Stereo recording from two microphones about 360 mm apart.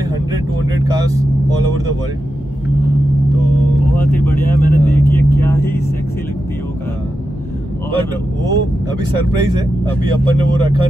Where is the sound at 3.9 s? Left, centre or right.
Centre.